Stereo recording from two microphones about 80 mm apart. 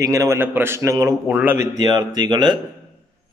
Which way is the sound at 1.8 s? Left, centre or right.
Right.